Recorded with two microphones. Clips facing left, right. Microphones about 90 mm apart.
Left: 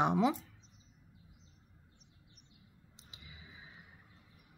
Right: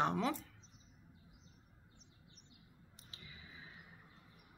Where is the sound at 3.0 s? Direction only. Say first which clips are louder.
Left 1 dB; 15° left (ahead or behind).